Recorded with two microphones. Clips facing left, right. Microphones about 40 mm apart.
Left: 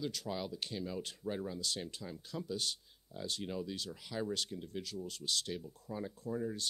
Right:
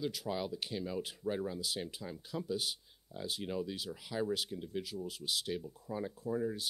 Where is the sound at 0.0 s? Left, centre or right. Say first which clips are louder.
Right 2 dB; centre.